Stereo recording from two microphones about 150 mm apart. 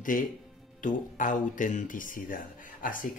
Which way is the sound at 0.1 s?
65° left (ahead or behind).